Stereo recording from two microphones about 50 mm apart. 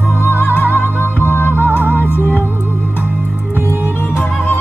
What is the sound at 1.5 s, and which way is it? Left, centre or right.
Music, right.